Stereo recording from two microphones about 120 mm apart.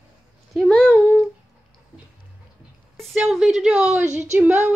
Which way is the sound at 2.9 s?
Centre (ahead or behind).